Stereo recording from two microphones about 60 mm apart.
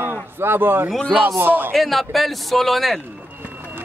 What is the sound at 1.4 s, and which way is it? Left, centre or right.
Speech, right.